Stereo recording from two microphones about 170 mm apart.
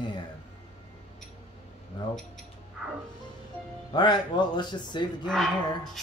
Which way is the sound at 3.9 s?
25° left (ahead or behind).